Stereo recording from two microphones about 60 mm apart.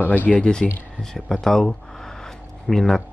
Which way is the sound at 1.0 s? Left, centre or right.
Centre.